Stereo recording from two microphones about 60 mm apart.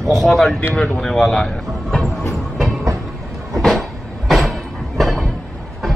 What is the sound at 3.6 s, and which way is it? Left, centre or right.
Cupboard open or close, centre.